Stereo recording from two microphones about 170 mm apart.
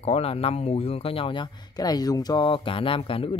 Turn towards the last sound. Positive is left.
turn(degrees=30)  # may be behind; listen again after turning